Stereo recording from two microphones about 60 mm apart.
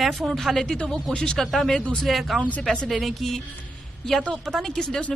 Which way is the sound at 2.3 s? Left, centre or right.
Centre.